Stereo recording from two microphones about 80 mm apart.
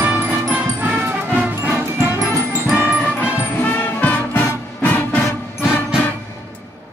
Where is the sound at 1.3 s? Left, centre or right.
Right.